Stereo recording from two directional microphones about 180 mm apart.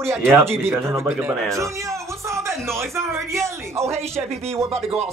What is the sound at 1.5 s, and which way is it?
Music, 15° right (ahead or behind).